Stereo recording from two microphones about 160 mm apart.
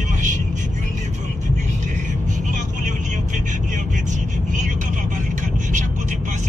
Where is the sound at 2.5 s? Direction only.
50° right (ahead or behind).